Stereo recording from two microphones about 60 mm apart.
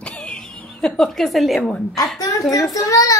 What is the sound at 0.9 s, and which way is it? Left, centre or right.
Speech, centre.